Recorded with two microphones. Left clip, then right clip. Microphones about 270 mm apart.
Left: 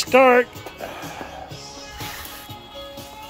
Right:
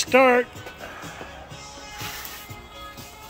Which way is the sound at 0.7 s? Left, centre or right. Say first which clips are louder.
Left 7 dB; left.